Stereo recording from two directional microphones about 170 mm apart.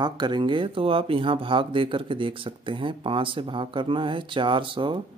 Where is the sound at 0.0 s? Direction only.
25° right (ahead or behind).